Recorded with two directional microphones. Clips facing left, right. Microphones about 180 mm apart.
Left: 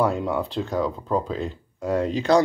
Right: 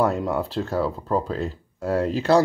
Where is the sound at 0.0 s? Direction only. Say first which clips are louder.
Right 1 dB; 5° right (ahead or behind).